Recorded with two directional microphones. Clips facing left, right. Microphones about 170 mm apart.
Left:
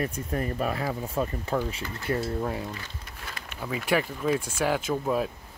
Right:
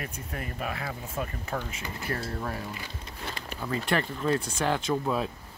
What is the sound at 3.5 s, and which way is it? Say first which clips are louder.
Speech: left 2 dB; 10° left (ahead or behind).